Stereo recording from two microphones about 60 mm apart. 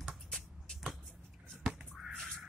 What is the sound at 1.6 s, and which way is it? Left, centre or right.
Crow, centre.